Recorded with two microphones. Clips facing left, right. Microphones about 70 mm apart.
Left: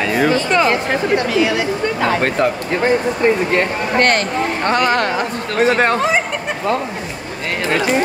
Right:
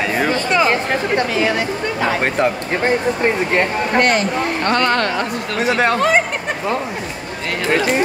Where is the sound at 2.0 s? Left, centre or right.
Centre.